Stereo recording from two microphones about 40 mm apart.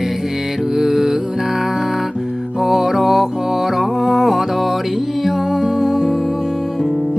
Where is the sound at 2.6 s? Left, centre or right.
Centre.